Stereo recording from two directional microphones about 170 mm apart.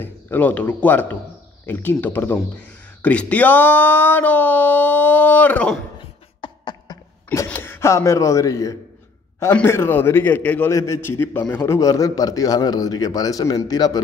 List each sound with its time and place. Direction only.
0.0 s speech: 10° left (ahead or behind)
6.4 s beatboxing: 25° left (ahead or behind)
7.2 s a man's voice: 10° left (ahead or behind)